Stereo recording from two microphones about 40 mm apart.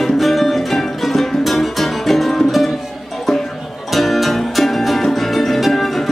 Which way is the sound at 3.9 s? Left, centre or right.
Centre.